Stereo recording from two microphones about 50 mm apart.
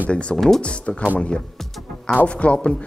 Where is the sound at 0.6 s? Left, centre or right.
Left.